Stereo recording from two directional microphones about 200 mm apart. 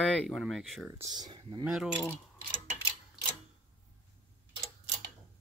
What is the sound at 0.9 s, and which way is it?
Speech, 20° right (ahead or behind).